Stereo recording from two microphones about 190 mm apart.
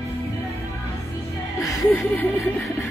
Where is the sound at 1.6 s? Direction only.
10° left (ahead or behind).